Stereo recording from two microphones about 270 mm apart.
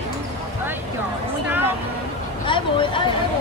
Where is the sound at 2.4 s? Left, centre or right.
Centre.